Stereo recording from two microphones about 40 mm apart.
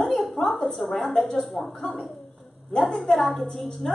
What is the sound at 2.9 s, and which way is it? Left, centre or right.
Speech, centre.